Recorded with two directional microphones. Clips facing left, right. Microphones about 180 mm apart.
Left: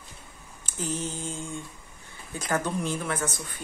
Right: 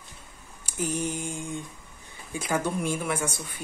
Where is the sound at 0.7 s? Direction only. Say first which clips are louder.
Right 3 dB; 10° right (ahead or behind).